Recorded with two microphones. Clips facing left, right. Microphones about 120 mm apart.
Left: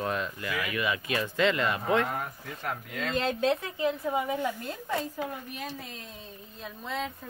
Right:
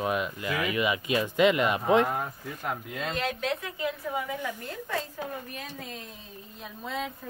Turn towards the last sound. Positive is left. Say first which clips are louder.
# even
turn(degrees=-5)  # may be behind; listen again after turning